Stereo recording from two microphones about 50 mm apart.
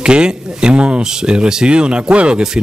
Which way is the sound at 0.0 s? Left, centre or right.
Centre.